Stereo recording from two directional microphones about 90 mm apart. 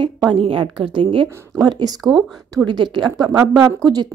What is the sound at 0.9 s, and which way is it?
Speech, 65° right (ahead or behind).